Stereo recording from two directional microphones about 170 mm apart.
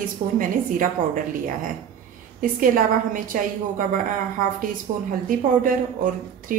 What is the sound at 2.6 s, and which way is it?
Speech, 55° right (ahead or behind).